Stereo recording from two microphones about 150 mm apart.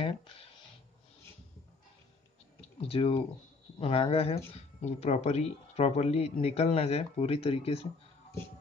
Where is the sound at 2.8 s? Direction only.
40° left (ahead or behind).